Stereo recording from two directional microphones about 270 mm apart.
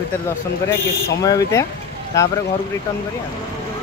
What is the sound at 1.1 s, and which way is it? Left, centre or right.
Speech, centre.